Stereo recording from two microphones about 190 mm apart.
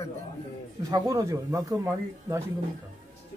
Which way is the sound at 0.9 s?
20° right (ahead or behind).